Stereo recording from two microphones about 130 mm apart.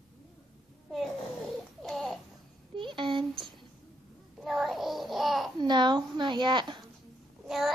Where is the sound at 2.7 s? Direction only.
40° right (ahead or behind).